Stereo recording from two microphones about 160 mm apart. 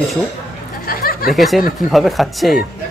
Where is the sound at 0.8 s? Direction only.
65° left (ahead or behind).